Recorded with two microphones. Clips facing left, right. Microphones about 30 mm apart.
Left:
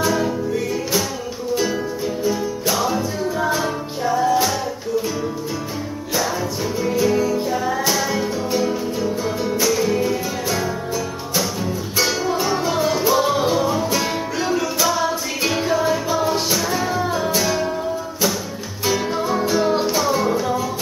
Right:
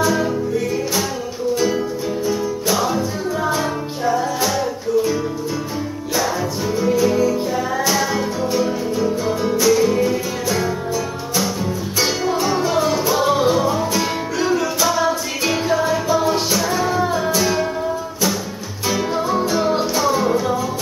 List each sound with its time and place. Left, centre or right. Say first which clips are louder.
0.0 s music: right 2 dB; centre
1.5 s music: right 2 dB; centre
6.9 s music: right 2 dB; centre
18.9 s music: right 1 dB; centre